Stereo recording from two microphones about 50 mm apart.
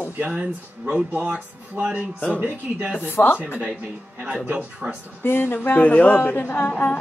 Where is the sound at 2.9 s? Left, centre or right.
Left.